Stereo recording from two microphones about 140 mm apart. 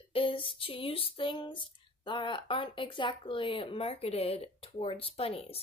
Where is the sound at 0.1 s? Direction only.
40° left (ahead or behind).